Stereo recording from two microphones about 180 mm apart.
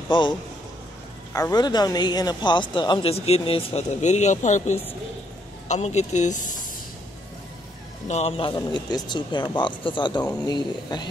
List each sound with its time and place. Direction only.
0.1 s speech: 25° left (ahead or behind); by 6.6 s 45° left (ahead or behind)
8.1 s speech: 35° left (ahead or behind)